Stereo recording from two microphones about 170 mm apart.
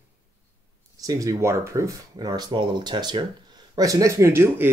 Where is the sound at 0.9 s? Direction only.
20° right (ahead or behind).